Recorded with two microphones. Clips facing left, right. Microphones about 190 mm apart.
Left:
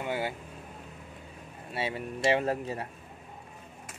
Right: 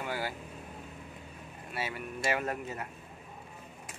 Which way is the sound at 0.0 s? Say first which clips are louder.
Left 4 dB; 20° left (ahead or behind).